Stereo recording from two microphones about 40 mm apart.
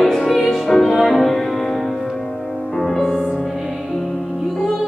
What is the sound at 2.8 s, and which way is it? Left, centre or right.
Music, centre.